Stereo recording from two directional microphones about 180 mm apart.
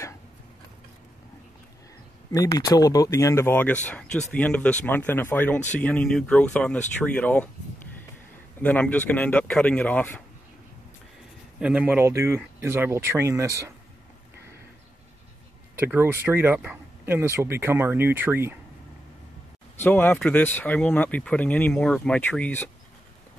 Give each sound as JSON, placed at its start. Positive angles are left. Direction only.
{"t": 2.3, "sound": "speech", "side_deg": 20}
{"t": 8.5, "sound": "speech", "side_deg": 10}
{"t": 11.6, "sound": "speech", "side_deg": -5}
{"t": 15.7, "sound": "speech", "side_deg": -10}
{"t": 19.8, "sound": "speech", "side_deg": 10}